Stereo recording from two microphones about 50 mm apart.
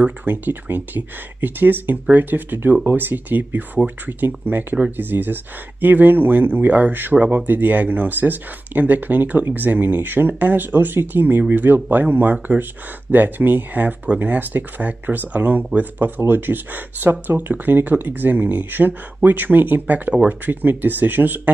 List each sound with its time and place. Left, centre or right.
0.2 s speech: right